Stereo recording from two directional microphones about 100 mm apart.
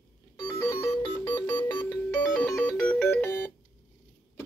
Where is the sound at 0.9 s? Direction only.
20° left (ahead or behind).